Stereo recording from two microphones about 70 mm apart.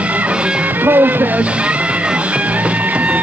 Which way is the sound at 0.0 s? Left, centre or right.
Centre.